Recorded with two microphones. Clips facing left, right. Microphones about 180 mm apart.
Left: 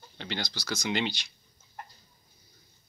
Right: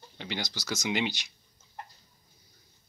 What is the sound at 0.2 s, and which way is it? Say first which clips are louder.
Speech: even; 15° right (ahead or behind).